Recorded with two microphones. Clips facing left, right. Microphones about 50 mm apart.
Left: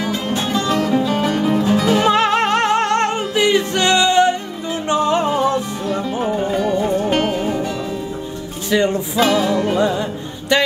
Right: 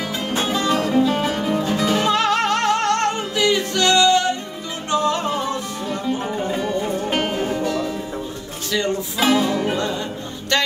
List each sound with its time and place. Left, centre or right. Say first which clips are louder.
0.5 s music: left 3 dB; centre
2.0 s music: left 3 dB; left; by 7.9 s centre
8.6 s music: left 5 dB; left
9.1 s music: left 1 dB; centre
9.8 s music: left 6 dB; centre